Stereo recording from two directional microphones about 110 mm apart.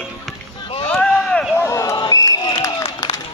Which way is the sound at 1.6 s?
25° left (ahead or behind).